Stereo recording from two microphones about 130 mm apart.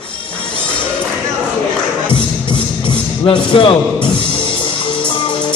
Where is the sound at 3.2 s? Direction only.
45° left (ahead or behind).